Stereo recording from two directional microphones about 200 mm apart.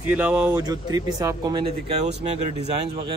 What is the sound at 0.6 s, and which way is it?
Speech, 20° right (ahead or behind).